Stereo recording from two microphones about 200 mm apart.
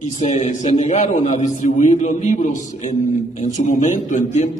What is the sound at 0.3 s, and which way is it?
A man's voice, 35° left (ahead or behind).